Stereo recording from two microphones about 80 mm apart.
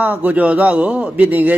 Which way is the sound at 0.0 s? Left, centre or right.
Centre.